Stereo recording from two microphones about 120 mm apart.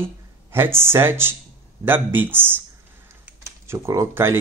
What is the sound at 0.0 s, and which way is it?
Speech, 20° right (ahead or behind).